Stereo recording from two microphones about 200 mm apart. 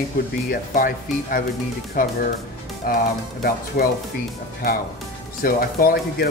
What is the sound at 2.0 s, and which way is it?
Speech, 45° left (ahead or behind).